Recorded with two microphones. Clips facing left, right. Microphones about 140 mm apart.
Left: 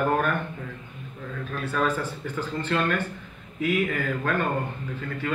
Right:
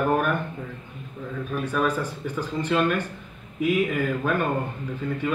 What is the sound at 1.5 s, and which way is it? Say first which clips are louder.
Speech: right 1 dB; 10° right (ahead or behind).